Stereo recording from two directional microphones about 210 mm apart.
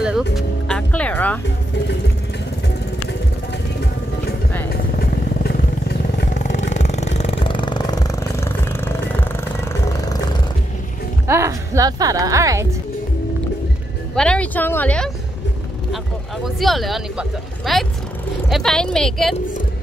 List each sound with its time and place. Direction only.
0.0 s music: centre (ahead or behind)
4.6 s vehicle: 45° left (ahead or behind)
6.3 s vehicle: 35° left (ahead or behind); by 10.2 s 15° left (ahead or behind)
11.2 s music: 15° right (ahead or behind)
14.1 s speech: 5° left (ahead or behind)
16.5 s speech: centre (ahead or behind)